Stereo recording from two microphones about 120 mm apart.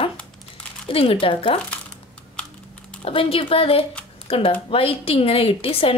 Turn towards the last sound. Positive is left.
turn(degrees=50)  # may be behind; listen again after turning